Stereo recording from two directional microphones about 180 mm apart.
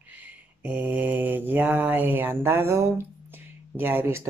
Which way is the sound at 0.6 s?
10° right (ahead or behind).